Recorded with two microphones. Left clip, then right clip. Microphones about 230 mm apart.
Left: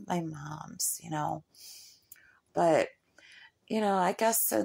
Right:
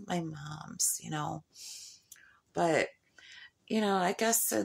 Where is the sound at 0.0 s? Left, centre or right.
Centre.